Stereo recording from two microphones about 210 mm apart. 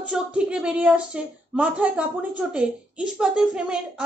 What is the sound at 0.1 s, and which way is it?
A woman's voice, 5° right (ahead or behind).